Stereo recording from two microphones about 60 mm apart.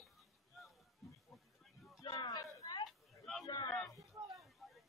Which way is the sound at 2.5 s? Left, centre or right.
Left.